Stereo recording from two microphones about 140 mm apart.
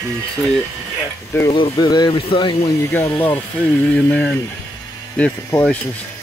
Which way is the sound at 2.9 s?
15° left (ahead or behind).